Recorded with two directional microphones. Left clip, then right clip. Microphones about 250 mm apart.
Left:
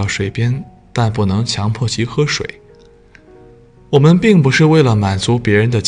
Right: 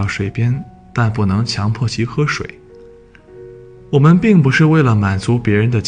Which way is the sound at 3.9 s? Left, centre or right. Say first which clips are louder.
Left 2 dB; centre.